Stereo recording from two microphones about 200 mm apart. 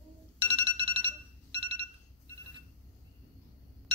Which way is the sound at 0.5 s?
30° right (ahead or behind).